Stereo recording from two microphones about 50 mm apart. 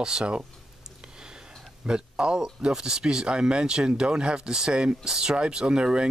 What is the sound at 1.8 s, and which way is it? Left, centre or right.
Speech, centre.